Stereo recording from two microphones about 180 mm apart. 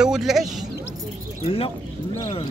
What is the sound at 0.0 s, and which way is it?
Speech, 5° right (ahead or behind).